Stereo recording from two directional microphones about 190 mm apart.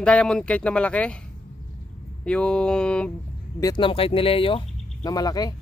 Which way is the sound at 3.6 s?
20° left (ahead or behind).